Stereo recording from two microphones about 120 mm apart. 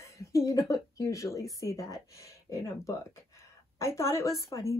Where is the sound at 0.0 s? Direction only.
25° left (ahead or behind).